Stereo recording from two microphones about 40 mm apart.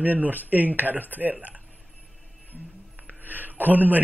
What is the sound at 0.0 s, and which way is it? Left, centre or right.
Speech, right.